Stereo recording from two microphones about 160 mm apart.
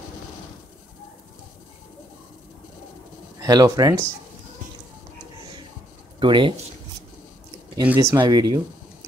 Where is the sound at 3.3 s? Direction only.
25° right (ahead or behind).